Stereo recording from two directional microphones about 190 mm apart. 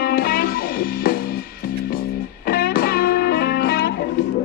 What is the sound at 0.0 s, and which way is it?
Music, 55° left (ahead or behind).